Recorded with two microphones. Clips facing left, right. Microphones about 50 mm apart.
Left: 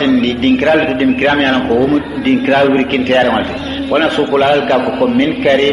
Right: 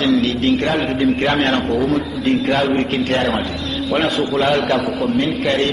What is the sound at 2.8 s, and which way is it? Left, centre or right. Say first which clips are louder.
Speech: left 6 dB; left.